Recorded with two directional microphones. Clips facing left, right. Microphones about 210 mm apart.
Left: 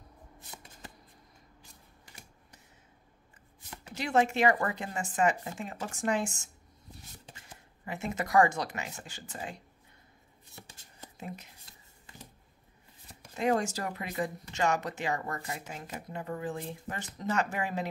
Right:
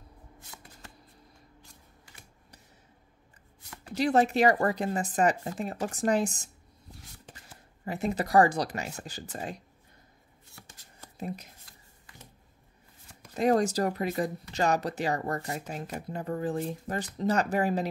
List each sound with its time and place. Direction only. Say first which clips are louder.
3.9 s speech: right 4 dB; 35° right (ahead or behind)
10.6 s shuffle: left 3 dB; 25° left (ahead or behind)
11.1 s speech: right 6 dB; 40° right (ahead or behind)
11.7 s a sound: even; 25° left (ahead or behind)
13.4 s speech: right 5 dB; 40° right (ahead or behind)